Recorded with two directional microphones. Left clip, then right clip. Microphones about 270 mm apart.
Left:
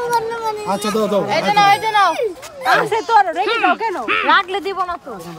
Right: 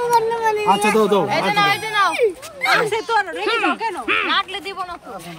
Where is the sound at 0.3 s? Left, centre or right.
Right.